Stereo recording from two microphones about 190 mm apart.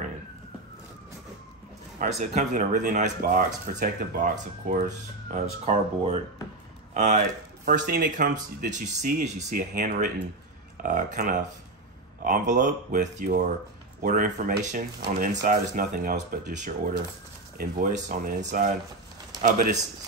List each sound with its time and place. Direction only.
2.1 s speech: 40° right (ahead or behind)